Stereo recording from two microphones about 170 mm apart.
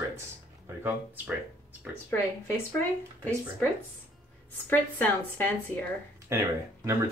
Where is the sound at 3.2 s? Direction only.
5° left (ahead or behind).